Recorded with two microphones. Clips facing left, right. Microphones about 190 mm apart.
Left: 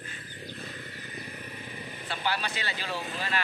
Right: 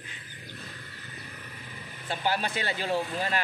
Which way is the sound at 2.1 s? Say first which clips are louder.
Right 3 dB; 45° right (ahead or behind).